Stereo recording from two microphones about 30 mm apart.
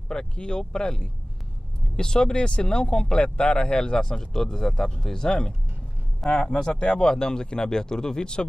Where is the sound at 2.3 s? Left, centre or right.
Left.